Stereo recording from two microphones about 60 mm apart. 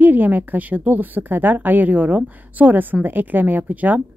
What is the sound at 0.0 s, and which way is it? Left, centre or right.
Speech, right.